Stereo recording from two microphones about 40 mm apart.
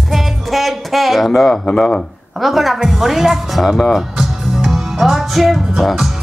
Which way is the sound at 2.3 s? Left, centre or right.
Centre.